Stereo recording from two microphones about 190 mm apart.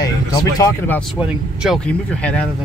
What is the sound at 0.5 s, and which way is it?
Speech, 15° left (ahead or behind).